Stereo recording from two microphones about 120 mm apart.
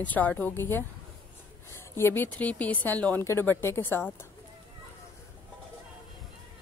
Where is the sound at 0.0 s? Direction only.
15° left (ahead or behind).